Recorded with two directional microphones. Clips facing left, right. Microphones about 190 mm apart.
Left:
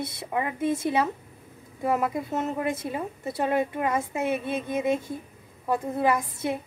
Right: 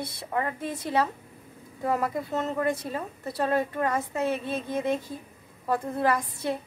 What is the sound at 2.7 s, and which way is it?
A woman's voice, 20° left (ahead or behind).